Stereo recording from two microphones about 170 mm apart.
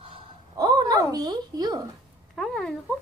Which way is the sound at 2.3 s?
5° left (ahead or behind).